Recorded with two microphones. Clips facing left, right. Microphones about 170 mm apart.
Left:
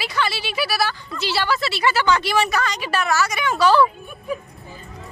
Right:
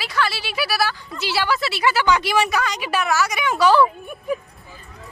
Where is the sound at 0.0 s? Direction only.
Centre (ahead or behind).